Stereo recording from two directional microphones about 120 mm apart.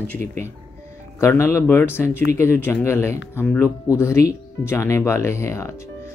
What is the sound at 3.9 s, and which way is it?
Speech, 25° left (ahead or behind).